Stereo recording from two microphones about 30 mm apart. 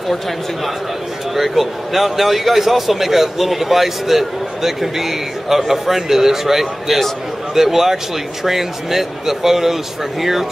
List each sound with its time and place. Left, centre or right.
1.3 s speech: centre